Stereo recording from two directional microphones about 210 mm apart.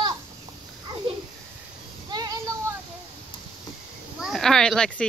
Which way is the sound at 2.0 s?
20° right (ahead or behind).